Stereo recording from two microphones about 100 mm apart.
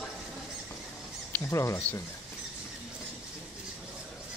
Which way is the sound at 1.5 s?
30° left (ahead or behind).